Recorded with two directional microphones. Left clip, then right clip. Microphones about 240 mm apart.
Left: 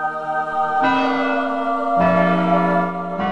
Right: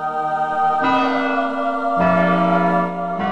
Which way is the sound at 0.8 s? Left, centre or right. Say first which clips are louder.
Even; centre.